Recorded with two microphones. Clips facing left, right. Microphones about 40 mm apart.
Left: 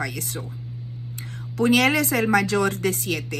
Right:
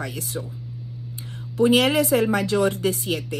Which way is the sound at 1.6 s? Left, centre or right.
Left.